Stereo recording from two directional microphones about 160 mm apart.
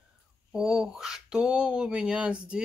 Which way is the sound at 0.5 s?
5° right (ahead or behind).